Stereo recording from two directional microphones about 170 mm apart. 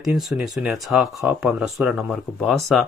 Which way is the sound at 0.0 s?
5° right (ahead or behind).